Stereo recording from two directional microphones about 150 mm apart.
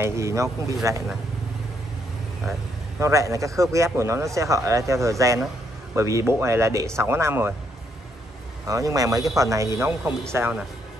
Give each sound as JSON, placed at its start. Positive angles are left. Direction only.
{"t": 0.0, "sound": "speech", "side_deg": -20}
{"t": 3.0, "sound": "speech", "side_deg": -20}
{"t": 8.6, "sound": "speech", "side_deg": -25}